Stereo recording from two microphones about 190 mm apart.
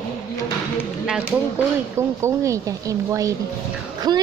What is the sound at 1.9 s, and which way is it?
A child's voice, 15° right (ahead or behind).